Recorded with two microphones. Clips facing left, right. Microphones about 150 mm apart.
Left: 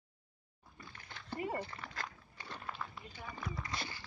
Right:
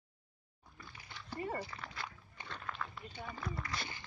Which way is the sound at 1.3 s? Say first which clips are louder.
Left 1 dB; 15° left (ahead or behind).